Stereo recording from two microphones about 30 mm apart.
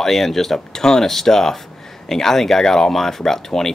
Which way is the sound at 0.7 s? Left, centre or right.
Centre.